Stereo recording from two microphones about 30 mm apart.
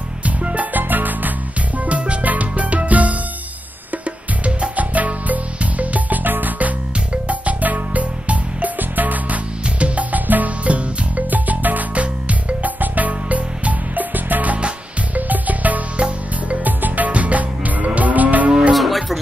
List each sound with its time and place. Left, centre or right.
0.2 s music: right
0.7 s music: right
1.9 s music: right
4.7 s music: right
7.2 s music: right
8.7 s music: right
9.8 s music: right
10.1 s music: right
10.6 s music: right
11.2 s music: right
11.9 s music: right
12.8 s music: right
17.1 s music: right
18.8 s music: centre